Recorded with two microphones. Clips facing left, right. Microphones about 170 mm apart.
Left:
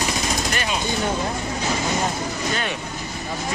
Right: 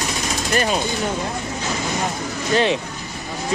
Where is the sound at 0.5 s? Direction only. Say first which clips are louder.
Right 6 dB; 40° right (ahead or behind).